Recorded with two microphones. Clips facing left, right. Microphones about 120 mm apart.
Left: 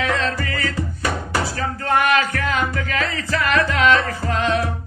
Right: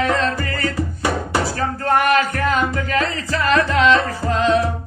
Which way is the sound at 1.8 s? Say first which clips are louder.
Right 2 dB; 40° right (ahead or behind).